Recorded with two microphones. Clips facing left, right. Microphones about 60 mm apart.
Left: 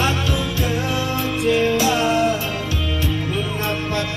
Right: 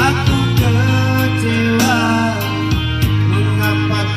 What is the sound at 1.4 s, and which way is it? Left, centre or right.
Music, right.